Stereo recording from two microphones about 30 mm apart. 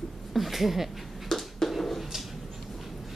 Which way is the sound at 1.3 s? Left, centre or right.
Centre.